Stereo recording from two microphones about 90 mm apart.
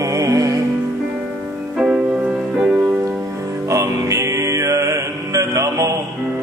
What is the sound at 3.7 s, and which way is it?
Mantra, 35° right (ahead or behind).